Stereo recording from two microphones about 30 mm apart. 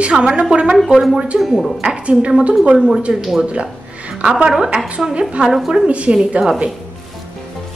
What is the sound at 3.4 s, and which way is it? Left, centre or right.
Music, right.